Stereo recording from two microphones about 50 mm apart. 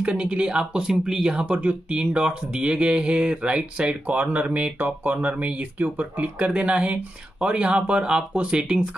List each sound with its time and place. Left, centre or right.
0.0 s speech: right
1.4 s speech: right